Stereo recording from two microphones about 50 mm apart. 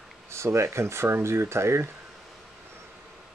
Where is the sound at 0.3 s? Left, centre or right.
Right.